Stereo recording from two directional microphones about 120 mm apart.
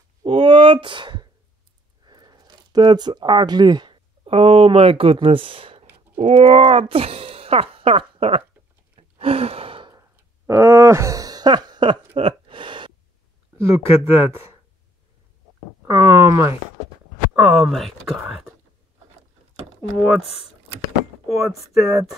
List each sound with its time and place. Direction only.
0.2 s speech: 45° right (ahead or behind)
6.1 s speech: 65° right (ahead or behind); by 8.5 s 50° right (ahead or behind)
8.9 s gasp: 55° right (ahead or behind)
9.9 s groan: 25° right (ahead or behind); by 12.9 s 40° right (ahead or behind)
13.6 s speech: 25° right (ahead or behind)
15.9 s speech: 25° right (ahead or behind)
17.5 s speech: centre (ahead or behind)
21.3 s speech: centre (ahead or behind)